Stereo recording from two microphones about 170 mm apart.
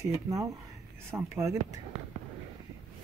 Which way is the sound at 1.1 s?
15° right (ahead or behind).